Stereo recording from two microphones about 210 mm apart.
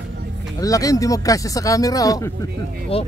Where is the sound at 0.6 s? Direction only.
15° left (ahead or behind).